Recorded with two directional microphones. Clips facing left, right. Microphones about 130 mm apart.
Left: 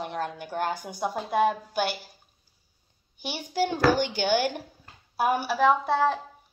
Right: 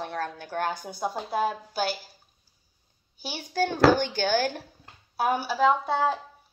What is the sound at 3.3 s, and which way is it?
A woman's voice, 15° left (ahead or behind).